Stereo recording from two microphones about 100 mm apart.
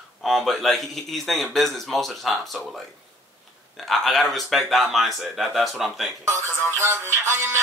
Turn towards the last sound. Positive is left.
turn(degrees=-25)  # may be behind; listen again after turning